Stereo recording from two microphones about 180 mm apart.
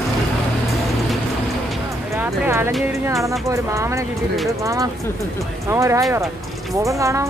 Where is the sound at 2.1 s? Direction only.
15° right (ahead or behind).